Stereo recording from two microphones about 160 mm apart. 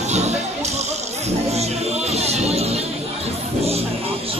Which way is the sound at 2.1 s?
40° right (ahead or behind).